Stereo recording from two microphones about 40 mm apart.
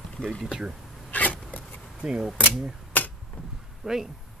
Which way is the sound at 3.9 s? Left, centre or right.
Centre.